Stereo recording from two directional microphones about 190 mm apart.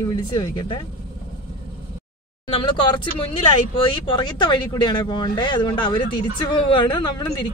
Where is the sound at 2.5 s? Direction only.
25° left (ahead or behind).